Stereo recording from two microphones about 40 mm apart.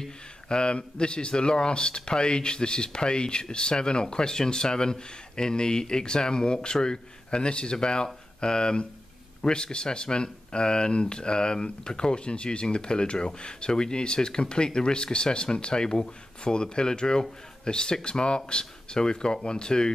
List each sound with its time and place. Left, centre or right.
0.0 s speech: left